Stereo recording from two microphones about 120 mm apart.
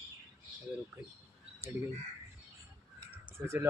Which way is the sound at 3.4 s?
20° right (ahead or behind).